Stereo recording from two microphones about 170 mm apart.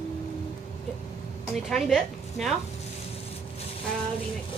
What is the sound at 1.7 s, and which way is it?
Speech, centre (ahead or behind).